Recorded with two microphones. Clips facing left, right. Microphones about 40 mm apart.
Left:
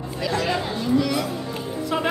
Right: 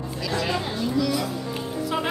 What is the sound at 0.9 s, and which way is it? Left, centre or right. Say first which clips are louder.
Music: left 3 dB; left.